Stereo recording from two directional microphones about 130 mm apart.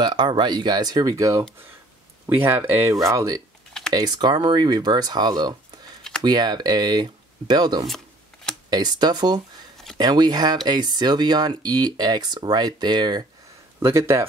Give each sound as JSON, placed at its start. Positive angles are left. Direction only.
{"t": 0.0, "sound": "speech", "side_deg": -35}
{"t": 2.2, "sound": "speech", "side_deg": -15}
{"t": 3.1, "sound": "speech", "side_deg": -25}
{"t": 13.7, "sound": "speech", "side_deg": -20}